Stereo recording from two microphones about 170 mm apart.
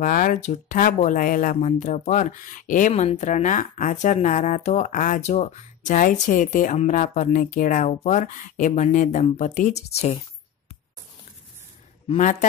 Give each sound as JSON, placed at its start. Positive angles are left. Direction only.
{"t": 0.0, "sound": "a woman's voice", "side_deg": 50}
{"t": 2.9, "sound": "a woman's voice", "side_deg": 40}
{"t": 12.2, "sound": "a woman's voice", "side_deg": 45}